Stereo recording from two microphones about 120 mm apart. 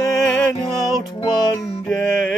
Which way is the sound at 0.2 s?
5° left (ahead or behind).